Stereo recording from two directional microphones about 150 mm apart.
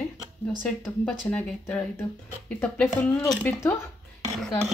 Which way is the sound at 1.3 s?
10° left (ahead or behind).